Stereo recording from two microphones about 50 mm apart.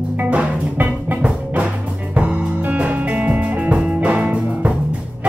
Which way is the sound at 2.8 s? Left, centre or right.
Right.